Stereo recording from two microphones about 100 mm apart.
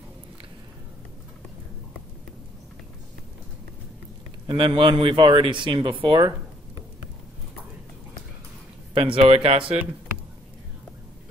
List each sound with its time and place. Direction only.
4.5 s speech: 60° right (ahead or behind)
8.9 s speech: 65° right (ahead or behind)